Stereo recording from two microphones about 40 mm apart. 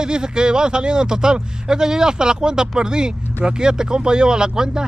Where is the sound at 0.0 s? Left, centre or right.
Right.